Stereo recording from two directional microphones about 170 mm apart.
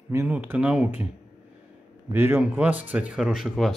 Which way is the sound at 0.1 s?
15° right (ahead or behind).